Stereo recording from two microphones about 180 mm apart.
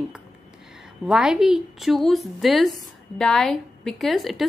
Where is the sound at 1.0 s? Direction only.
5° right (ahead or behind).